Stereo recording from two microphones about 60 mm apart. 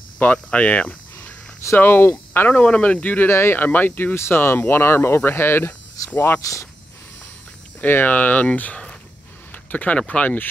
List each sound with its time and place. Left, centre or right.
0.2 s speech: left
1.8 s speech: left
2.6 s speech: left
3.3 s speech: left
3.6 s speech: left
6.4 s speech: left
7.8 s speech: left
9.5 s a sound: left
9.9 s speech: left